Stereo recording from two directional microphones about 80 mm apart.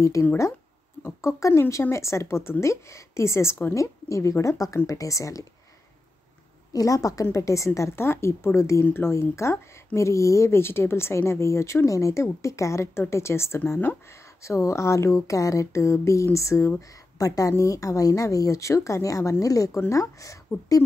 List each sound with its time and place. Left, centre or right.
0.2 s speech: left
6.7 s speech: left
8.8 s speech: left